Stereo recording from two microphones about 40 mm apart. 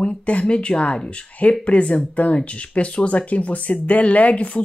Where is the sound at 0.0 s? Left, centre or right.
Left.